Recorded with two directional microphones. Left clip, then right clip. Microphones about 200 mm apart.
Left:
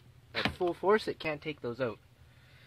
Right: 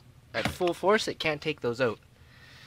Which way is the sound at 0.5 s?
5° right (ahead or behind).